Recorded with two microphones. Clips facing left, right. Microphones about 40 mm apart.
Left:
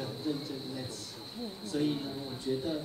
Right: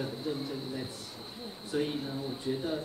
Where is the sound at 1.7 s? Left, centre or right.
Centre.